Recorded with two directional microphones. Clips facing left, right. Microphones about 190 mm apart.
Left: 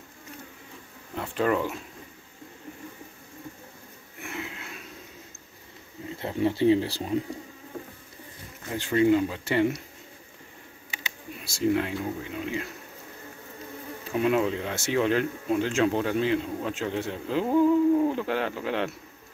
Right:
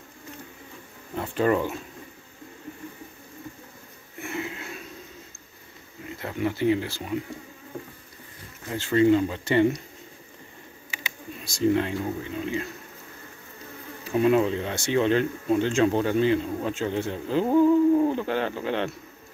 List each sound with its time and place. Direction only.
1.1 s speech: centre (ahead or behind)
4.2 s a sound: centre (ahead or behind)
6.0 s speech: 25° left (ahead or behind)
8.7 s speech: 15° left (ahead or behind)
11.4 s speech: 5° left (ahead or behind)
14.1 s speech: centre (ahead or behind)